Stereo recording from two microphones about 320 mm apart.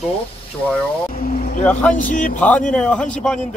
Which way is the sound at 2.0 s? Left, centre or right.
Left.